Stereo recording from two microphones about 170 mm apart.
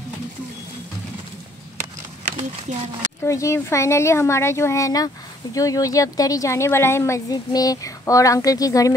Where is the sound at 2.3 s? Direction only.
40° right (ahead or behind).